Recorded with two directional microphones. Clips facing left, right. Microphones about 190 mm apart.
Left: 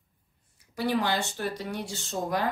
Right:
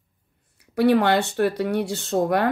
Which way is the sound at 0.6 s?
65° right (ahead or behind).